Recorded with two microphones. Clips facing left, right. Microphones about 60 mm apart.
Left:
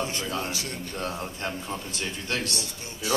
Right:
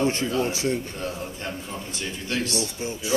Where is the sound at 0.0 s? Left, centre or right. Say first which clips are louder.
Right 7 dB; right.